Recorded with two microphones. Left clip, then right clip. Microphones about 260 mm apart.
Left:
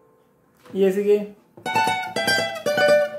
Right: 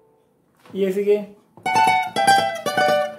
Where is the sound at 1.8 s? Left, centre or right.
Centre.